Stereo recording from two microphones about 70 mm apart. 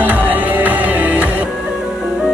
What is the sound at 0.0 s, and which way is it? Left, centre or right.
Music, right.